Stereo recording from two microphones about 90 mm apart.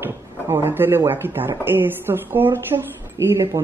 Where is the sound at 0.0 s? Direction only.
25° right (ahead or behind).